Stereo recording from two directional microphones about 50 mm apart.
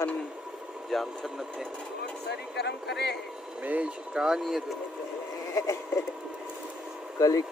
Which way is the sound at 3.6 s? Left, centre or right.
Right.